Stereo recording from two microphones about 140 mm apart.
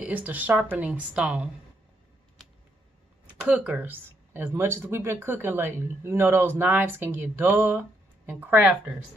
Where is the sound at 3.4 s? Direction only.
10° right (ahead or behind).